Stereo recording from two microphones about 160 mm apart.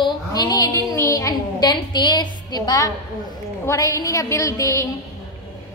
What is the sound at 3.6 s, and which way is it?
A woman's voice, 20° left (ahead or behind).